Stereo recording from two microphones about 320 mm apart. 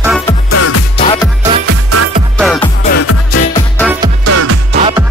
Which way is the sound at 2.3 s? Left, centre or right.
Centre.